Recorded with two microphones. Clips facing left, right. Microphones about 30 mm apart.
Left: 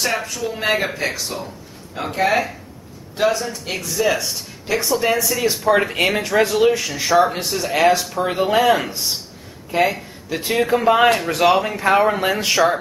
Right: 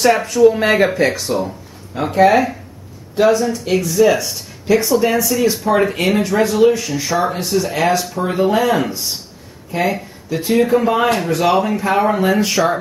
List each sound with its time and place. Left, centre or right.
0.0 s speech: centre
10.3 s speech: centre
12.2 s speech: centre